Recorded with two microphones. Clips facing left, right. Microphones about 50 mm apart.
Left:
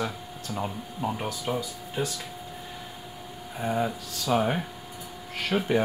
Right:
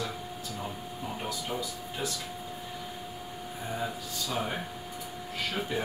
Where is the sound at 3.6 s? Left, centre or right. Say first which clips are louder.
Left 8 dB; left.